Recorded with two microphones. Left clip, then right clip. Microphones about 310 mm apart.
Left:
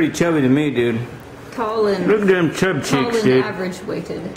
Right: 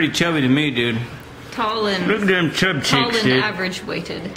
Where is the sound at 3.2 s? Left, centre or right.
Centre.